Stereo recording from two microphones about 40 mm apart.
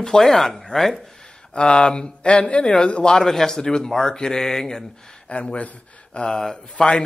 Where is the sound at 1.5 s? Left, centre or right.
Left.